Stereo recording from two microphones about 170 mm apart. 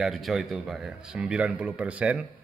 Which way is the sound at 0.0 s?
Centre (ahead or behind).